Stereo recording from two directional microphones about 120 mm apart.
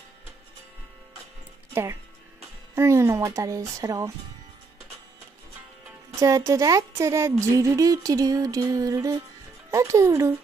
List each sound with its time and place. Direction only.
1.7 s speech: 20° right (ahead or behind)
6.1 s speech: 25° right (ahead or behind)